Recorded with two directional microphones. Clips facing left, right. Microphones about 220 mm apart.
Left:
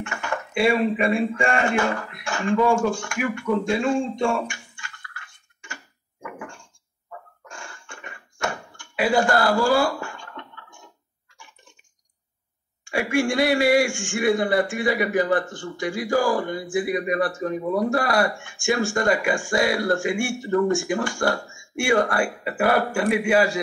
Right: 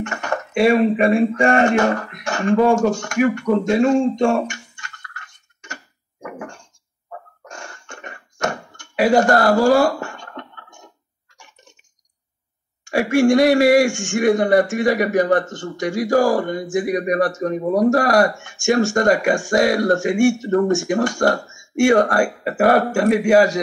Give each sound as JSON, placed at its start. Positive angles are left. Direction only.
{"t": 0.0, "sound": "a man's voice", "side_deg": -40}
{"t": 4.2, "sound": "music", "side_deg": -40}
{"t": 6.2, "sound": "a sound", "side_deg": -40}
{"t": 12.8, "sound": "a man's voice", "side_deg": -40}